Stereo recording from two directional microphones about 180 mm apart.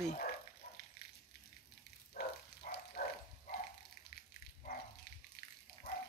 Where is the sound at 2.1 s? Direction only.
55° left (ahead or behind).